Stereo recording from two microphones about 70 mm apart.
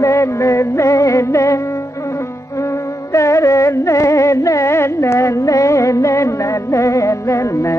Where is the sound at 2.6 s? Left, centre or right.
Left.